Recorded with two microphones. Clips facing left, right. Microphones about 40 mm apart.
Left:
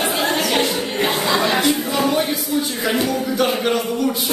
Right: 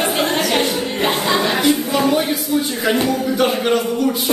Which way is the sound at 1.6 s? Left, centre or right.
Centre.